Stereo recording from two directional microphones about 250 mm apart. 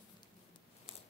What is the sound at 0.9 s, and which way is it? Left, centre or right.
Scissors, left.